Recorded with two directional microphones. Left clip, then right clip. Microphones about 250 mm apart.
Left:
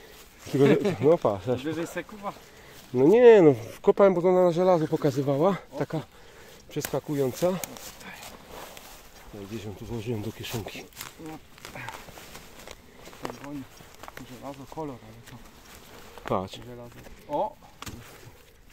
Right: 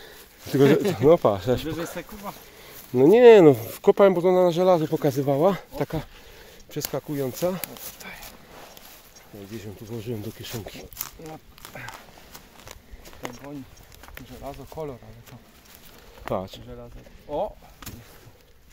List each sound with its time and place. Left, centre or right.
0.5 s speech: right
6.8 s speech: centre
9.6 s speech: centre
11.6 s speech: centre
14.4 s speech: right
16.3 s speech: centre